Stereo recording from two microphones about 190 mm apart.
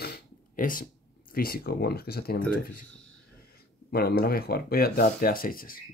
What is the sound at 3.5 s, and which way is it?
Speech, 55° left (ahead or behind).